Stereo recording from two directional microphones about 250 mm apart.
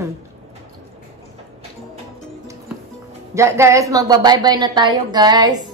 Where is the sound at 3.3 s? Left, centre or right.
Centre.